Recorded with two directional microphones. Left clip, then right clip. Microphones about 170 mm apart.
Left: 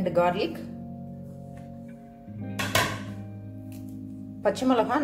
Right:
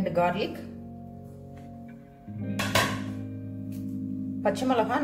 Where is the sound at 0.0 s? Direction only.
40° left (ahead or behind).